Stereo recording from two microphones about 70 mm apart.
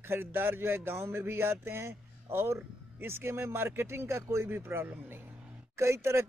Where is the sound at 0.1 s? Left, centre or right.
Right.